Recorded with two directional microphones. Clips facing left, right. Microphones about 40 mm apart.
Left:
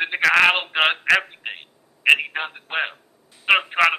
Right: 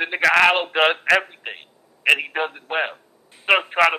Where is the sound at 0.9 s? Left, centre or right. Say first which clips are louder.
Even; centre.